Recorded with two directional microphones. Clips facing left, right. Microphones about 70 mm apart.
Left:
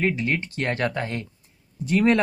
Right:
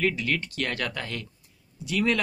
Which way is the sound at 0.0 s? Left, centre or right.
Left.